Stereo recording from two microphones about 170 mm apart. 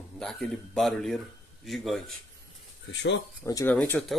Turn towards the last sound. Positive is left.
turn(degrees=5)  # may be behind; listen again after turning